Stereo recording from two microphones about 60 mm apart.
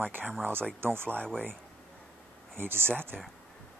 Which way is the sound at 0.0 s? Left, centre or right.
Right.